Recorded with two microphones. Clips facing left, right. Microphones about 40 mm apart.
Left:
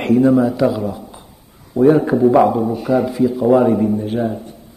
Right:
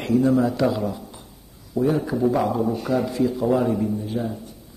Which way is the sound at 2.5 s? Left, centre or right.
Centre.